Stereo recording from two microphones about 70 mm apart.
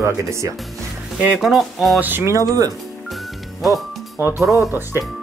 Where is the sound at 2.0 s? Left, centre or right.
Right.